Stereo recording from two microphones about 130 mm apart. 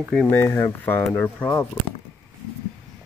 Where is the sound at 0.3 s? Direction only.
15° left (ahead or behind).